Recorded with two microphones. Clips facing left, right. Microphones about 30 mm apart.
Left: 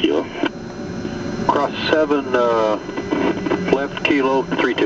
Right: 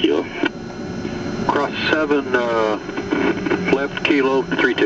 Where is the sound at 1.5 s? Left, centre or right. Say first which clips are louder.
Left 1 dB; centre.